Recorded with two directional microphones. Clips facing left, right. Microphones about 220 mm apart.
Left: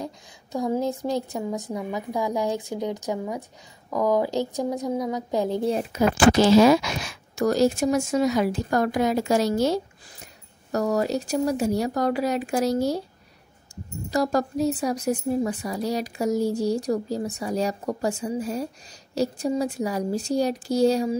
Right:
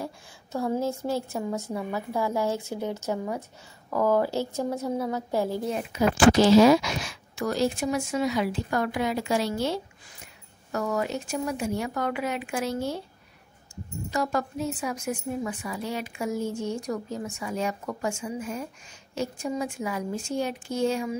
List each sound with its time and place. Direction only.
0.0 s a woman's voice: 15° left (ahead or behind)
5.7 s a woman's voice: 35° left (ahead or behind)
6.3 s a woman's voice: 50° left (ahead or behind)
14.1 s a woman's voice: 35° left (ahead or behind)